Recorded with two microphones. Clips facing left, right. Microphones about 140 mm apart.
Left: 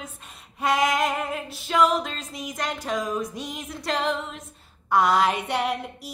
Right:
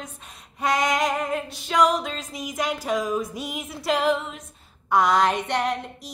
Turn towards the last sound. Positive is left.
turn(degrees=10)  # may be behind; listen again after turning